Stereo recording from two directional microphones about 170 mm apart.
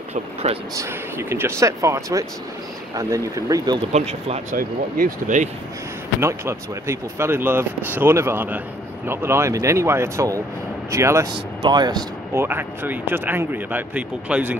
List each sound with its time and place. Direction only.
0.1 s speech: 35° right (ahead or behind)
0.7 s speech: 15° right (ahead or behind)
3.9 s speech: 40° right (ahead or behind)
4.6 s speech: 55° right (ahead or behind)
6.2 s speech: 15° right (ahead or behind)
12.4 s speech: 10° right (ahead or behind)